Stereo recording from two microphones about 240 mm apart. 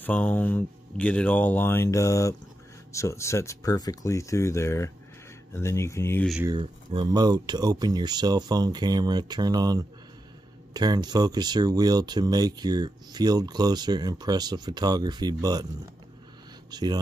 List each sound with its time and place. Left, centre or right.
0.0 s speech: centre
6.5 s speech: right
16.7 s speech: centre